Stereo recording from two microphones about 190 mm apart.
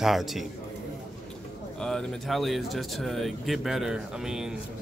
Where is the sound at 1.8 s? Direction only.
5° left (ahead or behind).